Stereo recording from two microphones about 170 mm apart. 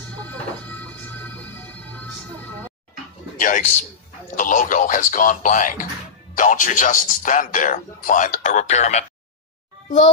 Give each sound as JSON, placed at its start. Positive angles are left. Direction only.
{"t": 0.2, "sound": "music", "side_deg": 10}
{"t": 3.3, "sound": "a man's voice", "side_deg": 50}